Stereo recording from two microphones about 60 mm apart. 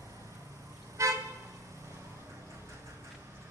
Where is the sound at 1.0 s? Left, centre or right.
Right.